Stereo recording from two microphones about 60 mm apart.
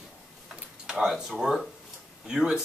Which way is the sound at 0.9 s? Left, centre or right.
Centre.